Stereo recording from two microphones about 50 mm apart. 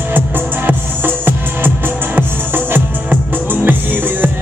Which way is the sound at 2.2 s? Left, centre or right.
Right.